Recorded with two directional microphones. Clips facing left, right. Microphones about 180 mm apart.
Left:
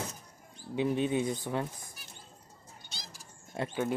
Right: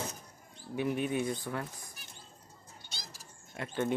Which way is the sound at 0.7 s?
25° left (ahead or behind).